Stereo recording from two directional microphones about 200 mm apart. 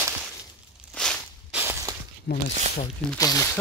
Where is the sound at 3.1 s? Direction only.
15° left (ahead or behind).